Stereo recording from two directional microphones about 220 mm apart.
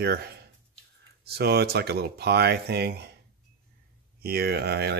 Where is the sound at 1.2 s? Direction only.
45° right (ahead or behind).